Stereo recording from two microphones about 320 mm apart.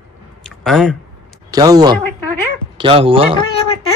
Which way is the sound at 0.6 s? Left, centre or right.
Centre.